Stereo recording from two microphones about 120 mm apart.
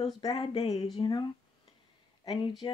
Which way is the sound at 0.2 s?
35° left (ahead or behind).